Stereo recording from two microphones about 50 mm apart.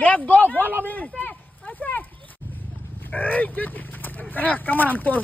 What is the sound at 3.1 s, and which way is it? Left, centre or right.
Speech, left.